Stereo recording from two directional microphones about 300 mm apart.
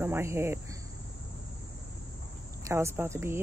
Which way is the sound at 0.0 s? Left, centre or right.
Centre.